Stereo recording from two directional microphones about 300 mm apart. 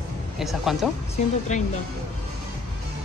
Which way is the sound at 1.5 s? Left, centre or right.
Left.